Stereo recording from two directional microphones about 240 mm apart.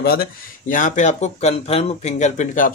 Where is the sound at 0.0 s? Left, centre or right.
Left.